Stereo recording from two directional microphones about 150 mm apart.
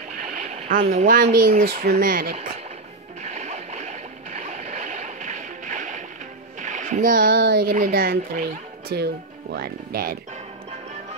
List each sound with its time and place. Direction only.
0.4 s a sound: 55° right (ahead or behind)
1.0 s speech: 75° right (ahead or behind)
3.3 s boat: 50° right (ahead or behind)
6.6 s speech: 55° right (ahead or behind); by 9.1 s 90° right
9.6 s speech: 80° right